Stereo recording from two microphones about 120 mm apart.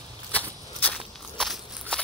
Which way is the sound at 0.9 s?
Centre (ahead or behind).